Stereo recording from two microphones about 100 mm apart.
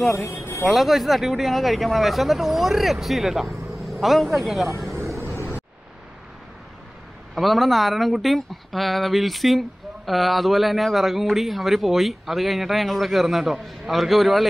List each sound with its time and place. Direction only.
0.1 s speech: 30° left (ahead or behind)
0.7 s speech: centre (ahead or behind)
5.3 s a sound: 25° left (ahead or behind)
7.3 s speech: centre (ahead or behind)